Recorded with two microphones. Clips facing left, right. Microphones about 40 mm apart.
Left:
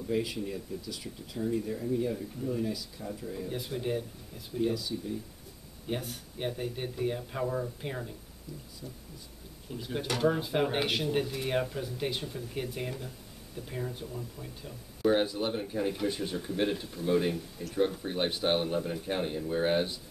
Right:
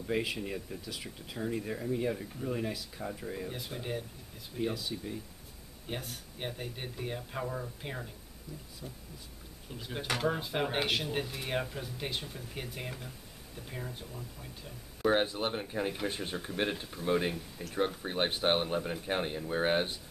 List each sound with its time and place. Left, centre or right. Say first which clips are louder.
0.1 s speech: left 1 dB; right
3.4 s speech: left 5 dB; centre
4.7 s speech: left 3 dB; right
5.9 s speech: left 5 dB; centre
9.7 s speech: left 2 dB; centre
15.0 s speech: left 2 dB; centre